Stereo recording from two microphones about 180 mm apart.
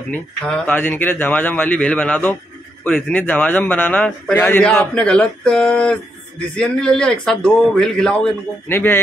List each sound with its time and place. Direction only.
0.1 s a man's voice: 10° left (ahead or behind)